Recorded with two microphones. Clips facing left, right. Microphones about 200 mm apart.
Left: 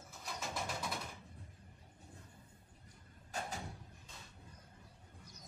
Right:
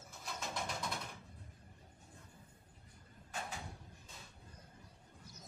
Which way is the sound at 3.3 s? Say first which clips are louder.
Left 2 dB; 40° left (ahead or behind).